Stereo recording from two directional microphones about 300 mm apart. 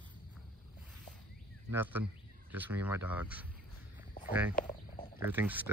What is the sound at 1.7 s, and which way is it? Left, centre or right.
Speech, centre.